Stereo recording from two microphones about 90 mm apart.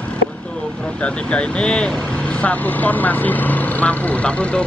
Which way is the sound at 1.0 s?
10° left (ahead or behind).